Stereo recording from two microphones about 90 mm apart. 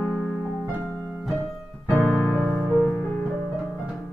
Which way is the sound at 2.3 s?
5° left (ahead or behind).